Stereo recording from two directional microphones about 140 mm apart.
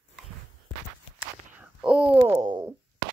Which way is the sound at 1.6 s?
10° right (ahead or behind).